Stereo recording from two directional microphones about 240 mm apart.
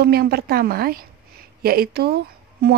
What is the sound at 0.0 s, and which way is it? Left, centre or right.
Speech, right.